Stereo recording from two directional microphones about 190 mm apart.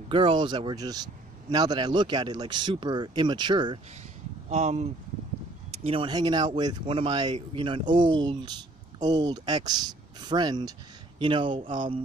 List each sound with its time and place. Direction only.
0.1 s speech: 25° right (ahead or behind)
4.5 s speech: 40° right (ahead or behind)
5.9 s speech: 25° right (ahead or behind)